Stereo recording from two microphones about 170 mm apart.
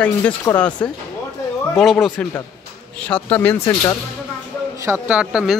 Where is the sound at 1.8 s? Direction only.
Centre (ahead or behind).